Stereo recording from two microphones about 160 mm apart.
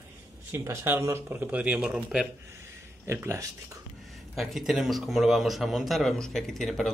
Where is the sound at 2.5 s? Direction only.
15° right (ahead or behind).